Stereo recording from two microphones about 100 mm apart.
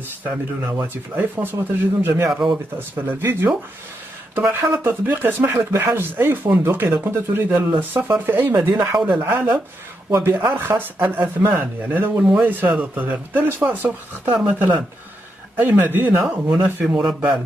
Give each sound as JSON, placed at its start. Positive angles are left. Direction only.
{"t": 0.2, "sound": "speech", "side_deg": -20}
{"t": 16.1, "sound": "speech", "side_deg": -5}
{"t": 16.3, "sound": "speech", "side_deg": -20}
{"t": 17.0, "sound": "speech", "side_deg": -5}